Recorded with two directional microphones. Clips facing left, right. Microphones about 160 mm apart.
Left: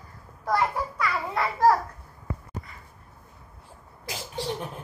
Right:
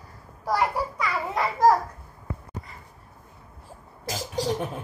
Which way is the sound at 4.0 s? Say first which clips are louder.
Right 5 dB; 40° right (ahead or behind).